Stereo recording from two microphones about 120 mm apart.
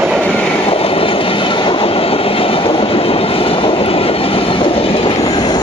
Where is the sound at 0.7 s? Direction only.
50° left (ahead or behind).